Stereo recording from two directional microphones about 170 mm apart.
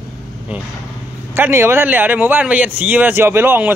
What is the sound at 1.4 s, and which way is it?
A man's voice, 15° right (ahead or behind).